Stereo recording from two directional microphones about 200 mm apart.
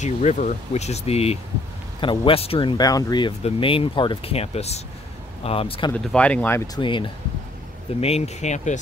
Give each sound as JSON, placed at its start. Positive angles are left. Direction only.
{"t": 0.0, "sound": "speech", "side_deg": 35}
{"t": 5.9, "sound": "speech", "side_deg": 5}
{"t": 6.8, "sound": "speech", "side_deg": 25}